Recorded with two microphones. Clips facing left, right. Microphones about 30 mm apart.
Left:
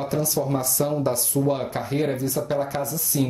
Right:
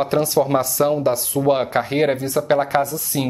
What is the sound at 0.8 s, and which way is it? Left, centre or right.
Speech, right.